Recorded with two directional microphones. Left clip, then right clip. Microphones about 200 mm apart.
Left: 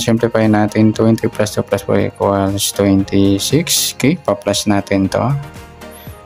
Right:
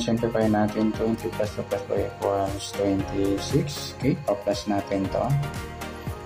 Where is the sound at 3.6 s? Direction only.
45° left (ahead or behind).